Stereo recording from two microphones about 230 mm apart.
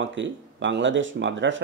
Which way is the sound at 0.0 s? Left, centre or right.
Right.